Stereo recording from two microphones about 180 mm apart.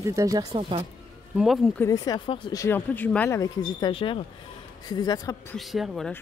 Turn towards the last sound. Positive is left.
turn(degrees=0)  # may be behind; listen again after turning